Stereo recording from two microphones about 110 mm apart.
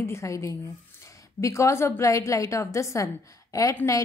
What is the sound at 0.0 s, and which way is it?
A woman's voice, 25° left (ahead or behind).